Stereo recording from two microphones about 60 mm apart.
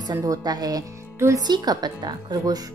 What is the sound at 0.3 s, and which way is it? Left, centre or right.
Speech, right.